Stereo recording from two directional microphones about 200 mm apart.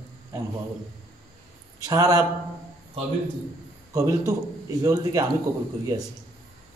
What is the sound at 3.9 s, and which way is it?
A man's voice, 15° right (ahead or behind).